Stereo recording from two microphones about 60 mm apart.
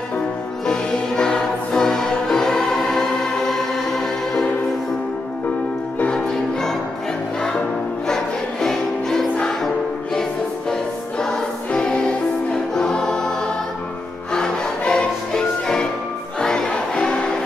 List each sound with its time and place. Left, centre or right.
0.7 s music: centre
5.9 s music: centre
8.1 s choir: centre
10.7 s music: centre
14.3 s music: centre